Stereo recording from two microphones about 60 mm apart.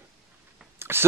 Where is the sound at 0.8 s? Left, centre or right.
Right.